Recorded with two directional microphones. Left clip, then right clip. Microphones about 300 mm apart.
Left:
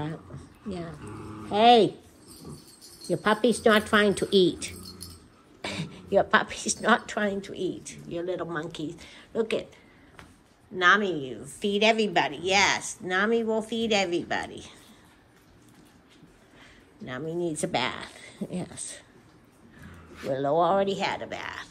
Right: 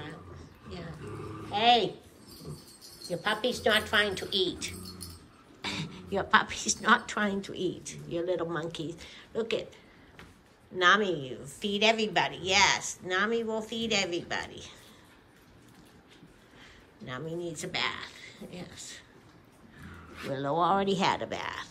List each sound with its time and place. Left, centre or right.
0.0 s a sound: centre
1.5 s speech: centre
3.1 s a woman's voice: centre
10.8 s a woman's voice: centre
17.0 s a woman's voice: centre
20.3 s speech: centre